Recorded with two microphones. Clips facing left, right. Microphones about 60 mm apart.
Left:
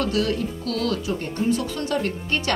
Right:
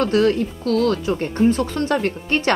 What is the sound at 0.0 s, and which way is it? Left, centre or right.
Speech, right.